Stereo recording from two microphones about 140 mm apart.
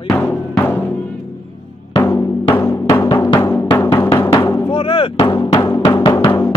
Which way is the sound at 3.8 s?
20° left (ahead or behind).